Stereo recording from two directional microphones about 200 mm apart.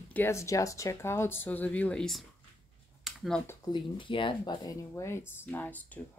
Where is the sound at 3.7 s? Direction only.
25° left (ahead or behind).